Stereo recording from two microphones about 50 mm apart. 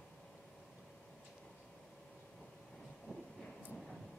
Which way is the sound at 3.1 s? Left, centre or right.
Centre.